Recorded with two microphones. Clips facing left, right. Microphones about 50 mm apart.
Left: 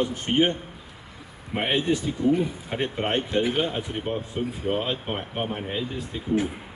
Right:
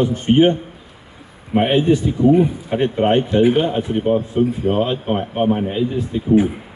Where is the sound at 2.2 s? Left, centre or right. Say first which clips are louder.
Right 9 dB; right.